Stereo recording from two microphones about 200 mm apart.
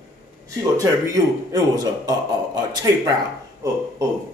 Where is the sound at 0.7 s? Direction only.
15° right (ahead or behind).